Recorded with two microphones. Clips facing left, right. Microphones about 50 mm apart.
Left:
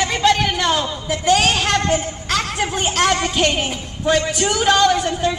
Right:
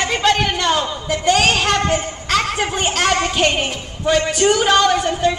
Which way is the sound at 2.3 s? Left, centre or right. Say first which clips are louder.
Right 3 dB; centre.